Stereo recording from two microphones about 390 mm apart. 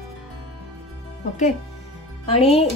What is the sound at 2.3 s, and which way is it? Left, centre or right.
Speech, centre.